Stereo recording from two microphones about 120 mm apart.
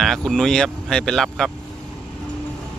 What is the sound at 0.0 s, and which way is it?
Speech, 5° left (ahead or behind).